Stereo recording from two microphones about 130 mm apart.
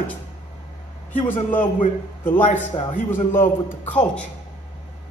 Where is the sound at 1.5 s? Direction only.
80° left.